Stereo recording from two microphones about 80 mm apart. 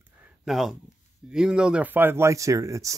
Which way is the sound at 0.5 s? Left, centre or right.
Centre.